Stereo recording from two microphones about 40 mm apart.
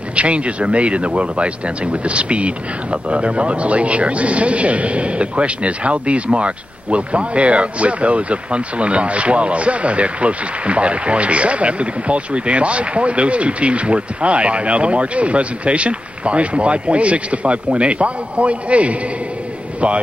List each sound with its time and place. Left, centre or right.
0.1 s speech: right